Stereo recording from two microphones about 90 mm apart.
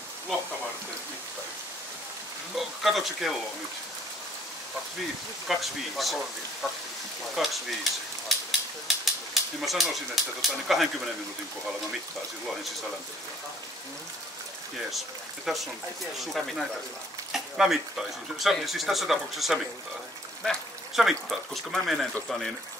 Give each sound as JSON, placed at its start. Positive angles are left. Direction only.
{"t": 2.5, "sound": "speech", "side_deg": 0}
{"t": 5.5, "sound": "speech", "side_deg": 0}
{"t": 7.4, "sound": "speech", "side_deg": 0}
{"t": 8.3, "sound": "a sound", "side_deg": 0}
{"t": 10.7, "sound": "speech", "side_deg": 0}
{"t": 15.4, "sound": "speech", "side_deg": 0}